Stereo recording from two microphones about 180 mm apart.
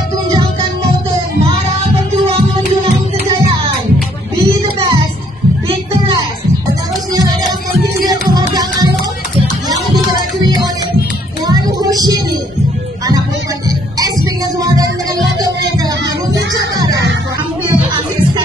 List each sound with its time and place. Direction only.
8.1 s music: 20° right (ahead or behind)
11.4 s music: 20° right (ahead or behind)
13.7 s music: 20° right (ahead or behind)
16.7 s music: 20° right (ahead or behind)